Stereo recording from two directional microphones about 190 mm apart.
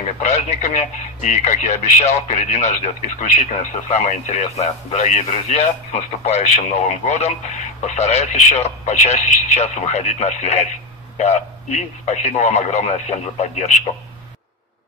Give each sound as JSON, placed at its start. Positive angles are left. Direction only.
{"t": 0.0, "sound": "speech", "side_deg": 35}